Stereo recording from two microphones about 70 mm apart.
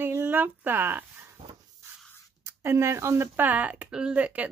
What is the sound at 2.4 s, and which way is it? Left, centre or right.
Speech, right.